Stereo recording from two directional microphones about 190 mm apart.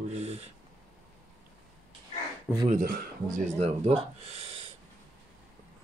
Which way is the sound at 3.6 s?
35° right (ahead or behind).